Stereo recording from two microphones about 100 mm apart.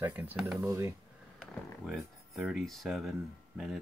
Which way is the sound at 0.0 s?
15° right (ahead or behind).